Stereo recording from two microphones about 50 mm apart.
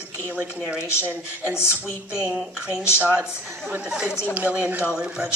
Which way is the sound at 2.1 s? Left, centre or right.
Left.